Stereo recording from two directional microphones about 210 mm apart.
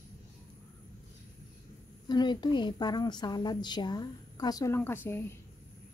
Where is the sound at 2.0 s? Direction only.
20° left (ahead or behind).